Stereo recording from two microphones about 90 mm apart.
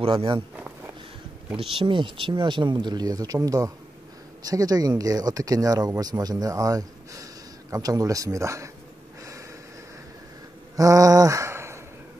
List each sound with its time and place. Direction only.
0.0 s speech: 90° right
1.6 s speech: 70° right (ahead or behind); by 8.6 s 35° right (ahead or behind)
10.8 s speech: 40° right (ahead or behind)